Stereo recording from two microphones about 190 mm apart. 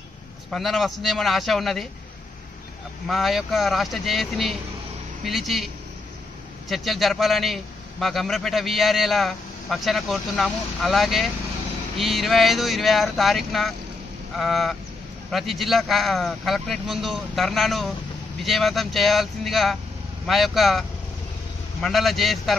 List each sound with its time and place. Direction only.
0.5 s a man's voice: centre (ahead or behind)
3.1 s a man's voice: centre (ahead or behind)
6.7 s a man's voice: centre (ahead or behind)
21.8 s a man's voice: centre (ahead or behind)